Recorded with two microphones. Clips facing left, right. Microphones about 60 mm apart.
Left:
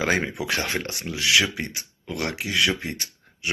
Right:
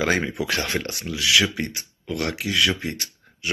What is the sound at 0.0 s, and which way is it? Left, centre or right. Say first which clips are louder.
Speech: right 1 dB; centre.